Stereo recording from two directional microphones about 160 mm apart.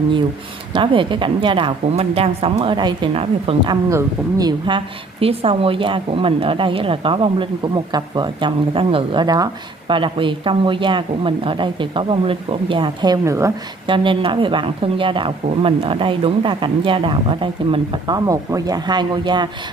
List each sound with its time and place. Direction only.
0.7 s speech: 30° right (ahead or behind)
13.8 s speech: 30° right (ahead or behind)
18.1 s speech: 20° right (ahead or behind)